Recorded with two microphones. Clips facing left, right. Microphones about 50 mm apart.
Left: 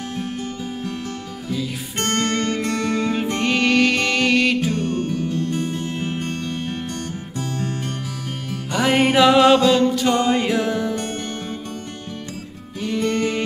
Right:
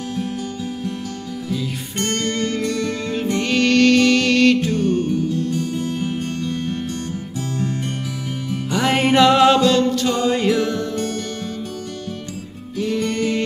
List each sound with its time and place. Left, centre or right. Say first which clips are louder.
2.0 s music: left 1 dB; left; by 4.7 s centre
4.8 s music: right 4 dB; left
8.6 s music: even; centre
11.0 s music: right 3 dB; left
12.7 s music: even; centre